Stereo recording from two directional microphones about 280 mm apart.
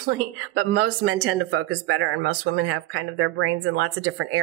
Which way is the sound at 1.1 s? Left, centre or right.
Right.